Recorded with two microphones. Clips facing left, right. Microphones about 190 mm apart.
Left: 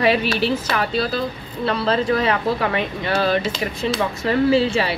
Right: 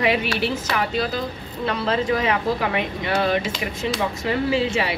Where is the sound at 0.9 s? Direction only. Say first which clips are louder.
Left 2 dB; 15° right (ahead or behind).